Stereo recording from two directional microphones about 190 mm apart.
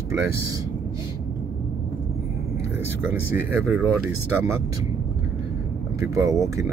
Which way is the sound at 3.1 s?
10° right (ahead or behind).